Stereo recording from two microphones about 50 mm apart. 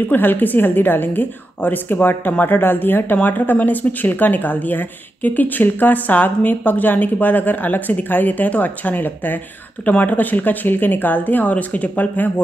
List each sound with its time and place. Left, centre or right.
0.1 s speech: left